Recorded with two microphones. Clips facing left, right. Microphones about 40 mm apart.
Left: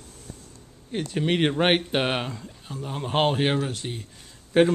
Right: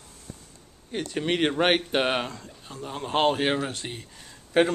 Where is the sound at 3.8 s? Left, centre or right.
Centre.